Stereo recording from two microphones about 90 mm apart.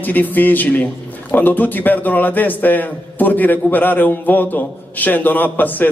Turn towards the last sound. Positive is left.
turn(degrees=20)  # may be behind; listen again after turning